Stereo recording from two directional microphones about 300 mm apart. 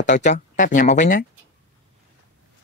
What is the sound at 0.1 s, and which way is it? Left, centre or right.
Speech, left.